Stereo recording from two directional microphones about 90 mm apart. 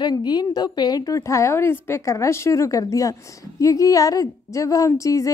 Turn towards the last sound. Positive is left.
turn(degrees=35)  # may be behind; listen again after turning